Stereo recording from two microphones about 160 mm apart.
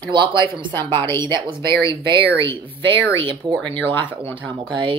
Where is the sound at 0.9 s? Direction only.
15° left (ahead or behind).